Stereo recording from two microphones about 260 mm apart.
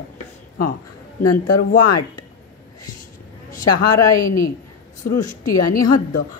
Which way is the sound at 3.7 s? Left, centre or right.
Left.